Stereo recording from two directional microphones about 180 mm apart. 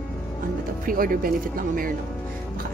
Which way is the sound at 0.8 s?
50° right (ahead or behind).